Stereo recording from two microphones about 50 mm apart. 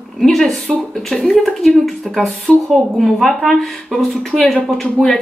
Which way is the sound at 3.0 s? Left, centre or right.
Centre.